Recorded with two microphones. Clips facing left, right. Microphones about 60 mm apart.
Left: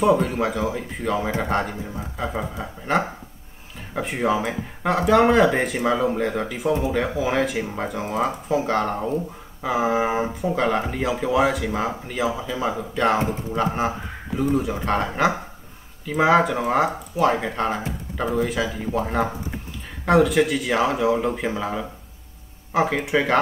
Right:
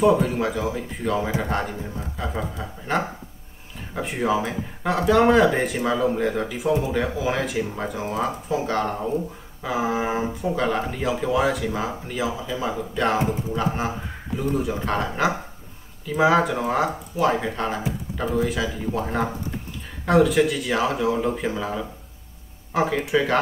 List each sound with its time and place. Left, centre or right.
0.0 s speech: centre
2.9 s speech: centre
5.8 s speech: centre
6.0 s speech: centre
7.6 s speech: centre
7.9 s speech: centre